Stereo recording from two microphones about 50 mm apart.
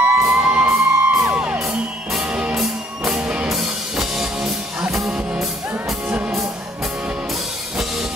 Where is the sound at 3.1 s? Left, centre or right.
Right.